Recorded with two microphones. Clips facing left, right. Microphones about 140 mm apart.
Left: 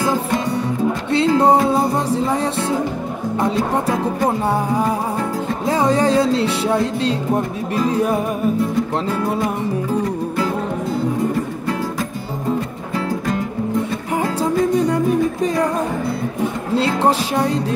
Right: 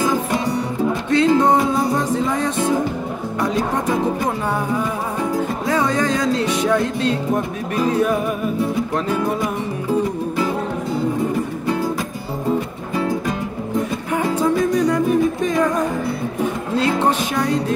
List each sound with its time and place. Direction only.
1.1 s music: 30° left (ahead or behind)
3.3 s speech: 30° left (ahead or behind)
5.7 s music: 35° left (ahead or behind)
14.1 s music: 30° left (ahead or behind)
16.7 s music: 30° left (ahead or behind)